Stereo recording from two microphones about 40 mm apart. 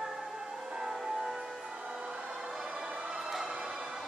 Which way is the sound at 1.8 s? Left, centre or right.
Right.